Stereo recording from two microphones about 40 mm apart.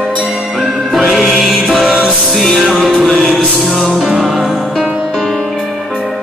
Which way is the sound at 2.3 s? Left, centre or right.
Centre.